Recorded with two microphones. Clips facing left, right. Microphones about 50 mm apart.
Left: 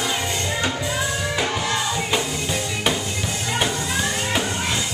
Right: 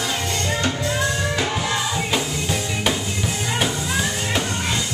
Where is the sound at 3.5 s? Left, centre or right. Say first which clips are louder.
Even; centre.